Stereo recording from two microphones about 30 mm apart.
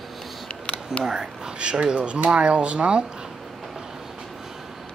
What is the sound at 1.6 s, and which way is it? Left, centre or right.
Speech, right.